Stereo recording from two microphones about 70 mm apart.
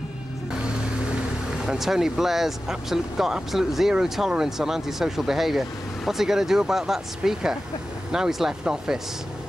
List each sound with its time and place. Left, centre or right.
1.7 s speech: centre